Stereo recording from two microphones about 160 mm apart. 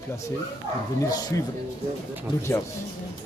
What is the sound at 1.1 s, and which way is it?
Speech, 25° left (ahead or behind).